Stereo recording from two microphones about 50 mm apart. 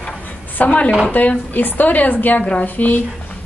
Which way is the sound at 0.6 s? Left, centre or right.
Left.